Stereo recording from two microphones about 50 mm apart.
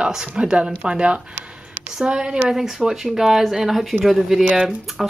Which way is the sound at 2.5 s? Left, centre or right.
Centre.